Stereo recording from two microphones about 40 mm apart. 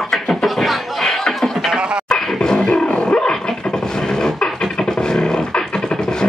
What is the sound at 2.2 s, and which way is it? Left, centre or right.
Roaring cats, centre.